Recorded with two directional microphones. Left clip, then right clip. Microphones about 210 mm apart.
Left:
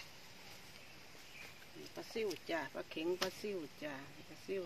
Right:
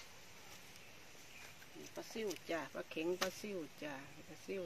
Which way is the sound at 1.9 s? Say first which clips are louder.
Left 3 dB; 10° right (ahead or behind).